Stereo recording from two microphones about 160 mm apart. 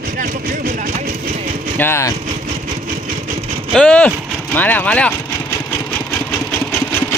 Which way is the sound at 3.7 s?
5° left (ahead or behind).